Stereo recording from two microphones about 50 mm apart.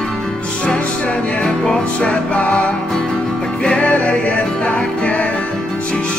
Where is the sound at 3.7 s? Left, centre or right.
Left.